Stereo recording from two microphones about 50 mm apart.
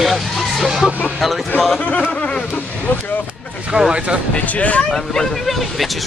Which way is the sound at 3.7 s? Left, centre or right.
Centre.